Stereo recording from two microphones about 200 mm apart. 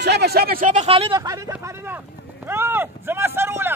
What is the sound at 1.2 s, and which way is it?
Speech, 15° right (ahead or behind).